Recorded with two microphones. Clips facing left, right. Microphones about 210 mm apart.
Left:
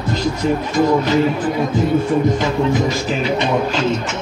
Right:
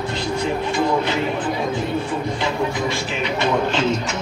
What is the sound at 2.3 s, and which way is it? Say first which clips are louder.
Music: left 6 dB; 45° left (ahead or behind).